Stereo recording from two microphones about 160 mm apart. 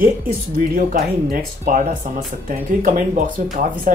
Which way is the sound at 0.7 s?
60° right (ahead or behind).